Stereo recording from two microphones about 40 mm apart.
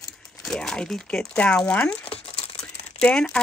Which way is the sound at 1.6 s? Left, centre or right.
Left.